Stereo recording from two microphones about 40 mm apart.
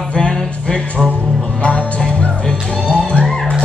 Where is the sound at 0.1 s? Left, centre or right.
Left.